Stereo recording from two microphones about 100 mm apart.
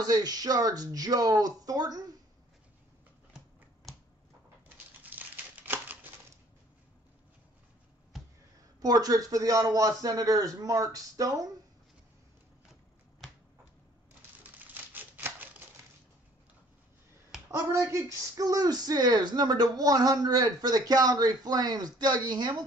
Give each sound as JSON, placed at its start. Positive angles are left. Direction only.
{"t": 0.0, "sound": "speech", "side_deg": -40}
{"t": 5.0, "sound": "crumpling", "side_deg": -15}
{"t": 8.8, "sound": "speech", "side_deg": -40}
{"t": 14.6, "sound": "a sound", "side_deg": -20}
{"t": 17.6, "sound": "speech", "side_deg": -30}